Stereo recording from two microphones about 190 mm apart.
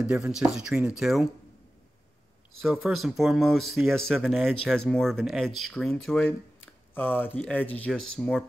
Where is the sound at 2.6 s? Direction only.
Centre (ahead or behind).